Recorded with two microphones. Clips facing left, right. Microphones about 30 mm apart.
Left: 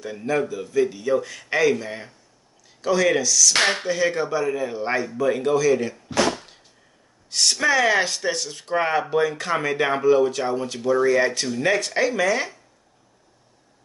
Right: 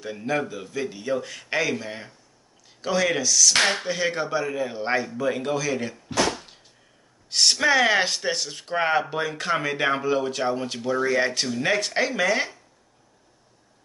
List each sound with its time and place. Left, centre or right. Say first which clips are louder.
0.0 s speech: left 3 dB; centre
3.5 s speech: left 1 dB; centre
3.9 s speech: left 3 dB; centre
7.2 s speech: even; centre